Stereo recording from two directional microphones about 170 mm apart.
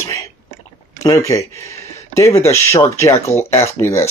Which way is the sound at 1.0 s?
20° left (ahead or behind).